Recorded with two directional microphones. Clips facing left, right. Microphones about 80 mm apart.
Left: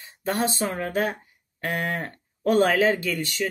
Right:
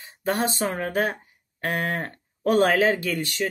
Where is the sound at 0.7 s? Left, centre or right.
Centre.